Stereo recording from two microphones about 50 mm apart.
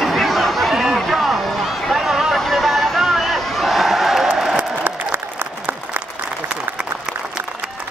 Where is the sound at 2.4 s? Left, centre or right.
Centre.